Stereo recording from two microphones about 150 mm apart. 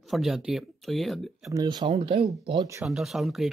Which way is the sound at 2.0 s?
45° right (ahead or behind).